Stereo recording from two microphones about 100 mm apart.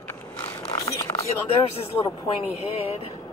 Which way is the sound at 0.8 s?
35° left (ahead or behind).